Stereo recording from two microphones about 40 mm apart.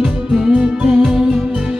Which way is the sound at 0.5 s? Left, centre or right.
Right.